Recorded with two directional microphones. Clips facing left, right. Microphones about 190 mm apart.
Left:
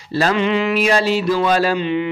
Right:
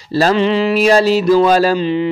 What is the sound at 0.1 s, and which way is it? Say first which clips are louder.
A man's voice: right 4 dB; 35° right (ahead or behind).